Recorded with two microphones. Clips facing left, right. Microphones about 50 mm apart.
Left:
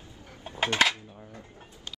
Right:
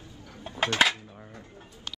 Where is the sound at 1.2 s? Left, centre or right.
Right.